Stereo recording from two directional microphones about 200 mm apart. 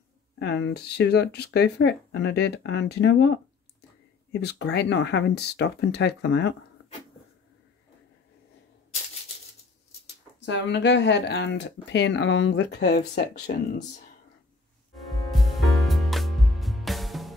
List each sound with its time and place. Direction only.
0.4 s speech: 60° left (ahead or behind)
10.4 s speech: 60° left (ahead or behind)
13.1 s speech: 40° left (ahead or behind)
15.3 s music: centre (ahead or behind)